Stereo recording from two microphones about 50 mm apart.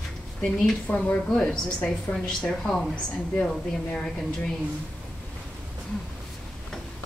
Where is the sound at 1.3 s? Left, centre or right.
Centre.